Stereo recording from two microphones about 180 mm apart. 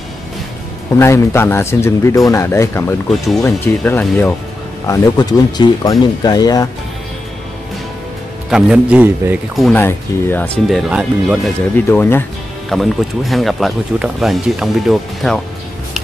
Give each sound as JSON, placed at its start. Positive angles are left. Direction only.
{"t": 0.9, "sound": "speech", "side_deg": 15}
{"t": 8.5, "sound": "speech", "side_deg": -5}
{"t": 9.7, "sound": "speech", "side_deg": 10}
{"t": 11.7, "sound": "speech", "side_deg": 10}
{"t": 12.6, "sound": "speech", "side_deg": 0}